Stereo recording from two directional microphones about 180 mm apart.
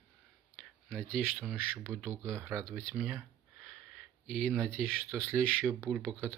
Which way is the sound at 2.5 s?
Centre (ahead or behind).